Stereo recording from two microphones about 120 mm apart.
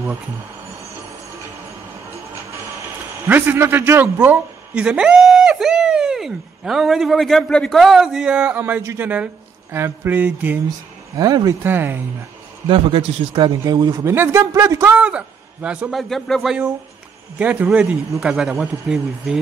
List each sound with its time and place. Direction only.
2.1 s music: 25° right (ahead or behind)
3.3 s a man's voice: 15° right (ahead or behind)
11.1 s a man's voice: 30° right (ahead or behind)
11.6 s speech: 15° right (ahead or behind)
12.6 s a man's voice: 45° right (ahead or behind)
14.0 s speech: 20° right (ahead or behind)
15.0 s a man's voice: 10° right (ahead or behind)
16.0 s a man's voice: centre (ahead or behind)
17.4 s a man's voice: 10° right (ahead or behind)